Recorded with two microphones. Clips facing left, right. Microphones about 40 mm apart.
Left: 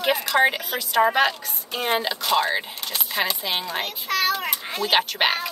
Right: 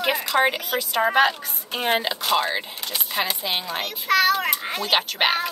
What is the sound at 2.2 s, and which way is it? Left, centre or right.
A woman's voice, centre.